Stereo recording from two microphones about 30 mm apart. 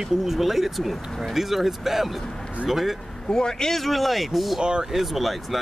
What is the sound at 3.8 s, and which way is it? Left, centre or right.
Speech, centre.